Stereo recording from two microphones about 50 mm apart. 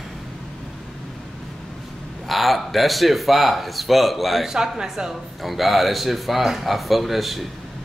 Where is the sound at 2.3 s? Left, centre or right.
Centre.